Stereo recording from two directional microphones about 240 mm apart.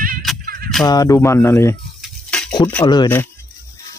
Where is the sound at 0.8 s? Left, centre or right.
Centre.